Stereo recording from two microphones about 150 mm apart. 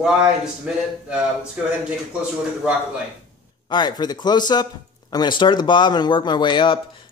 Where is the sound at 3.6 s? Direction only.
30° left (ahead or behind).